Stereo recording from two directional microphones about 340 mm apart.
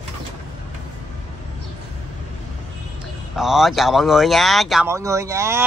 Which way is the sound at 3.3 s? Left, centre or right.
Centre.